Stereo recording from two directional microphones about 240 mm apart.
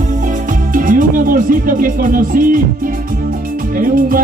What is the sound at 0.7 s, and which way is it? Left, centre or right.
Music, right.